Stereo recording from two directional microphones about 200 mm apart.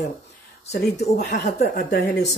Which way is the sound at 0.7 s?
55° left (ahead or behind).